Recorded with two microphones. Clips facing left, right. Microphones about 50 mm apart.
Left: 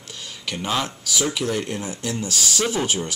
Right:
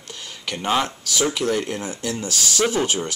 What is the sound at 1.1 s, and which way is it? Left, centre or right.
Speech, centre.